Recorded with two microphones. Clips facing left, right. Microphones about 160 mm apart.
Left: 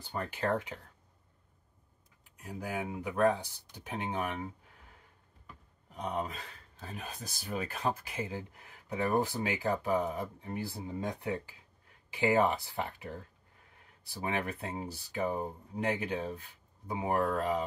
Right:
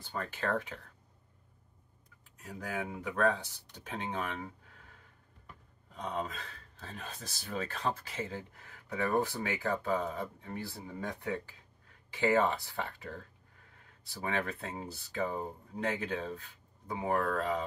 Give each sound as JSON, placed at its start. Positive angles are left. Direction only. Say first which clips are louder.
{"t": 0.0, "sound": "speech", "louder": "left 2 dB", "side_deg": 15}
{"t": 2.4, "sound": "speech", "louder": "left 1 dB", "side_deg": 15}
{"t": 5.9, "sound": "speech", "louder": "left 1 dB", "side_deg": 15}